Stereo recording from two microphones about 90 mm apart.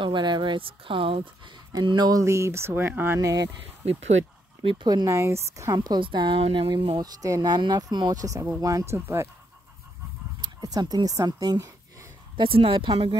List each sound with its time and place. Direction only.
0.0 s speech: 60° right (ahead or behind); by 1.3 s 75° right (ahead or behind)
1.7 s speech: 50° right (ahead or behind)
2.2 s speech: 30° right (ahead or behind)
3.2 s speech: 40° right (ahead or behind)
5.0 s speech: 30° right (ahead or behind)
5.9 s speech: 60° right (ahead or behind); by 6.7 s 80° right
6.7 s speech: 65° right (ahead or behind)
7.0 s speech: 45° right (ahead or behind)
10.4 s speech: 45° right (ahead or behind)
12.4 s a woman's voice: 90° right; by 13.1 s 70° right (ahead or behind)